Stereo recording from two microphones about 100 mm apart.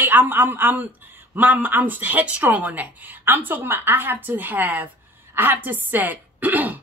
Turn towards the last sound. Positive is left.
turn(degrees=-15)  # may be behind; listen again after turning